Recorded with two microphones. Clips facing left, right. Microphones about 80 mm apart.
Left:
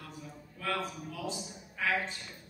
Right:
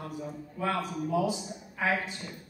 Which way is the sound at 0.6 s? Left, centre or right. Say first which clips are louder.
Right 5 dB; right.